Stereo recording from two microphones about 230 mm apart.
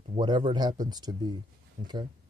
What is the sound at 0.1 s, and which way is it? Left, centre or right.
Speech, centre.